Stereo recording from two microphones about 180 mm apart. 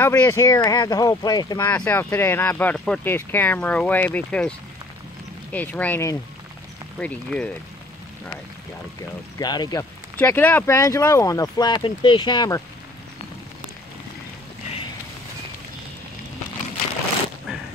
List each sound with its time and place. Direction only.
0.0 s speech: 10° left (ahead or behind)
1.7 s speech: 10° left (ahead or behind)
9.4 s speech: 25° left (ahead or behind)
10.1 s speech: 10° left (ahead or behind)